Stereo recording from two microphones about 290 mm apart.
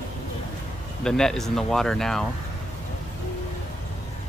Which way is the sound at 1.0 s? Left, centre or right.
Centre.